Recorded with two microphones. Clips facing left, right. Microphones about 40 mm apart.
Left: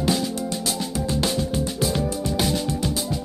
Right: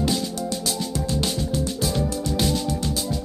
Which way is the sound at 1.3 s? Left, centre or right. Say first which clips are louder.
Left 1 dB; centre.